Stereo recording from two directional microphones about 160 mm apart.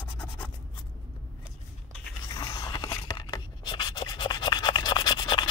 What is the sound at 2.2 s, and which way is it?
Writing, 25° left (ahead or behind).